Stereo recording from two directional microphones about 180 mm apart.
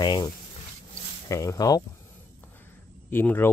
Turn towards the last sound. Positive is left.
turn(degrees=10)  # may be behind; listen again after turning